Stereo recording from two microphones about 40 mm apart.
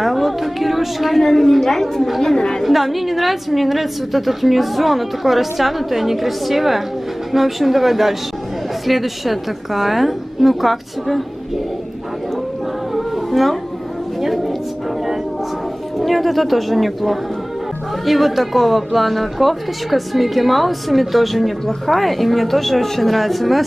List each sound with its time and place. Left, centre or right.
0.0 s music: centre
1.2 s speech: centre
2.3 s a woman's voice: centre
2.6 s speech: centre
12.9 s music: centre
16.0 s speech: centre